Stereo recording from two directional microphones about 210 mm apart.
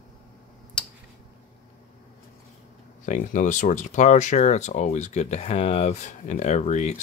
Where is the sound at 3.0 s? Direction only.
35° left (ahead or behind).